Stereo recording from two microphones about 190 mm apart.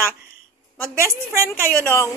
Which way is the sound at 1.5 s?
10° left (ahead or behind).